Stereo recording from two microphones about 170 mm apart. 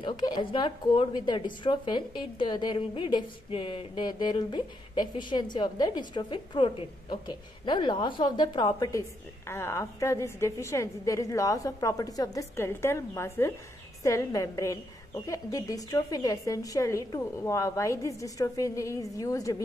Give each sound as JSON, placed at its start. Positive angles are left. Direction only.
{"t": 0.0, "sound": "a woman's voice", "side_deg": 30}